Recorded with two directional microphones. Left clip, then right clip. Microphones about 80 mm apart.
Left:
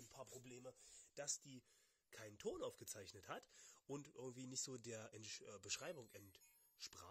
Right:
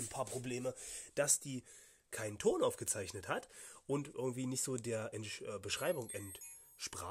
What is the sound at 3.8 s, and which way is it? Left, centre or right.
Speech, left.